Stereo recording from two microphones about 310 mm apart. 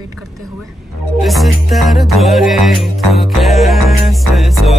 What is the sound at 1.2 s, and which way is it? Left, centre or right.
Music, centre.